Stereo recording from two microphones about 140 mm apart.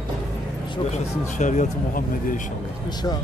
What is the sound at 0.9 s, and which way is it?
Speech, 60° left (ahead or behind).